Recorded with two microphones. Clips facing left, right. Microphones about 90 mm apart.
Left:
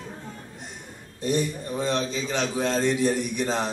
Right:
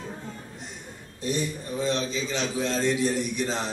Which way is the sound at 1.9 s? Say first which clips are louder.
Left 1 dB; 50° left (ahead or behind).